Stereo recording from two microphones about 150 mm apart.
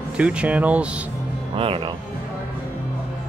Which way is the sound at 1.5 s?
35° right (ahead or behind).